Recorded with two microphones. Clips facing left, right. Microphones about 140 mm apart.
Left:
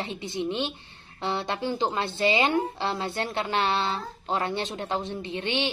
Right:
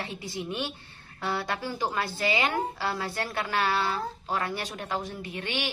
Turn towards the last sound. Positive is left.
turn(degrees=25)  # may be behind; listen again after turning